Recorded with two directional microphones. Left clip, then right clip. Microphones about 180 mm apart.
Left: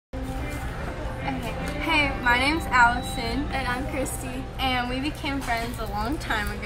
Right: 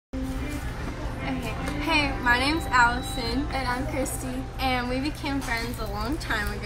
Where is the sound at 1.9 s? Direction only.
15° left (ahead or behind).